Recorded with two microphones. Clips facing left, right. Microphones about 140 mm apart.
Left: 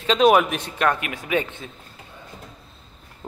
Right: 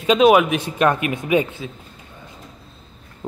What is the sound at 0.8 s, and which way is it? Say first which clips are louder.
Speech: right 4 dB; 20° right (ahead or behind).